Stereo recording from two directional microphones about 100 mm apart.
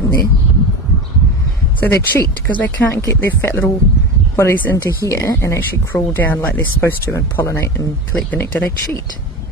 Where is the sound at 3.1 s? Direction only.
20° left (ahead or behind).